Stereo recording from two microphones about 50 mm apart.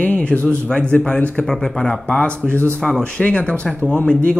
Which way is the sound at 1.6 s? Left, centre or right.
Centre.